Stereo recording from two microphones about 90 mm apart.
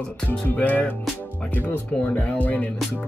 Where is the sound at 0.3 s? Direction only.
15° left (ahead or behind).